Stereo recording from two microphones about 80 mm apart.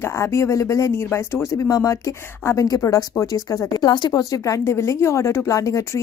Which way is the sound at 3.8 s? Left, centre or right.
Left.